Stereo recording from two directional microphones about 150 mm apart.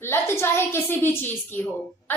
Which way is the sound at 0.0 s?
15° left (ahead or behind).